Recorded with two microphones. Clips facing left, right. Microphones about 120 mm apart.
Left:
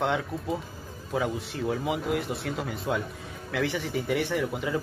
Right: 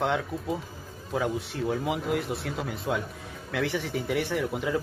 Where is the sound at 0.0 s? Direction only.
Centre (ahead or behind).